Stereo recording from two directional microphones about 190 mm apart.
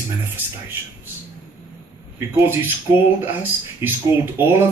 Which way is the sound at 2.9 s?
15° right (ahead or behind).